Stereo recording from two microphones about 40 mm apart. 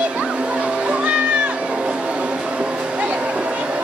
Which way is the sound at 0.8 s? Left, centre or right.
Right.